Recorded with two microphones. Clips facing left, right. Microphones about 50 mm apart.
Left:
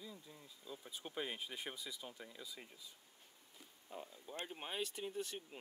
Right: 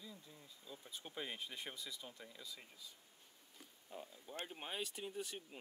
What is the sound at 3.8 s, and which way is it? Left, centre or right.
Speech, centre.